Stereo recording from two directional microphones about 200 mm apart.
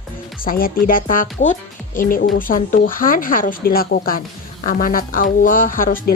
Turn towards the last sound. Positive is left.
turn(degrees=45)  # may be behind; listen again after turning